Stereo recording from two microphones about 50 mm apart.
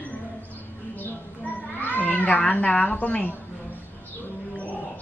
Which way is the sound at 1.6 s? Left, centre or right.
Left.